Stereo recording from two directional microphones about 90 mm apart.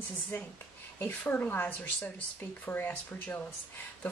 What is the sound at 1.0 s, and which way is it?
Speech, 20° left (ahead or behind).